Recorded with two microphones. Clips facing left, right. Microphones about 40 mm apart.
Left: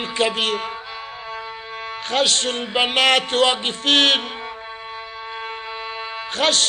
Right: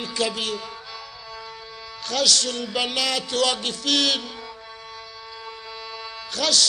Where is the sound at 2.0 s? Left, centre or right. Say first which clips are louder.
Left 3 dB; left.